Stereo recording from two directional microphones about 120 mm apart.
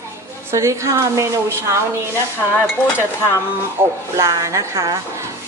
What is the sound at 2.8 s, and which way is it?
Dishes, 20° left (ahead or behind).